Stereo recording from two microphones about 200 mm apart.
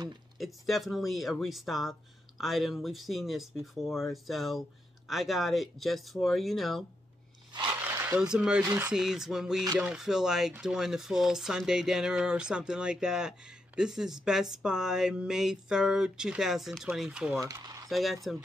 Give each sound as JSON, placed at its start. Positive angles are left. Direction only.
{"t": 0.4, "sound": "speech", "side_deg": 0}
{"t": 7.5, "sound": "a sound", "side_deg": -10}
{"t": 8.6, "sound": "speech", "side_deg": -15}
{"t": 8.9, "sound": "speech", "side_deg": 0}